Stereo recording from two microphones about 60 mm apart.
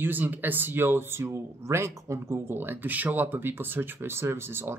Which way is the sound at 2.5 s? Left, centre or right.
Right.